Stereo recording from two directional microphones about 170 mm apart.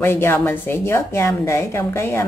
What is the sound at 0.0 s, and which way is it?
A woman's voice, 15° left (ahead or behind).